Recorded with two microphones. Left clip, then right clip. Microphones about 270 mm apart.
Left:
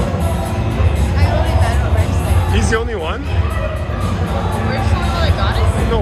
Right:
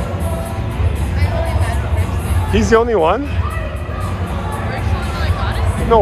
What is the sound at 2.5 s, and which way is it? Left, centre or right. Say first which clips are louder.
Speech: right 8 dB; centre.